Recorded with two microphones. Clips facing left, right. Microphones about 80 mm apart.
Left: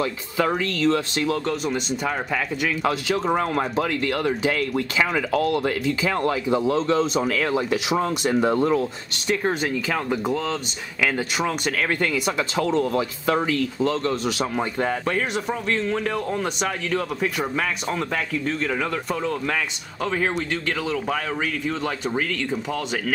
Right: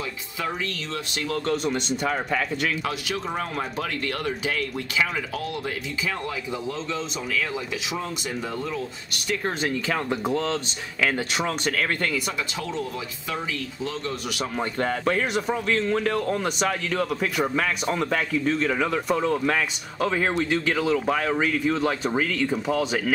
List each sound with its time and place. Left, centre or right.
0.0 s speech: left
1.1 s speech: left
1.4 s speech: centre
2.8 s speech: left
5.1 s speech: left
6.2 s a man's voice: left
7.2 s speech: left
9.5 s speech: centre
12.5 s speech: left
14.5 s speech: centre
15.0 s speech: centre